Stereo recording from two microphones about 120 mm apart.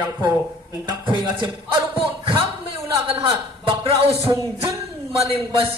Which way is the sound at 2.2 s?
45° right (ahead or behind).